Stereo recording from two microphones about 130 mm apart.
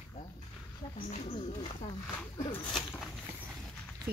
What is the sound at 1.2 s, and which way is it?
Speech, 50° left (ahead or behind).